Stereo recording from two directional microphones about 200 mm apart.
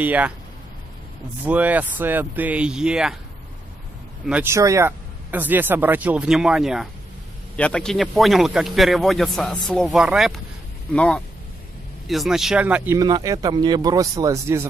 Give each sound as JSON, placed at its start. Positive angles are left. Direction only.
{"t": 0.0, "sound": "speech", "side_deg": -10}
{"t": 1.4, "sound": "speech", "side_deg": -10}
{"t": 4.3, "sound": "a man's voice", "side_deg": -10}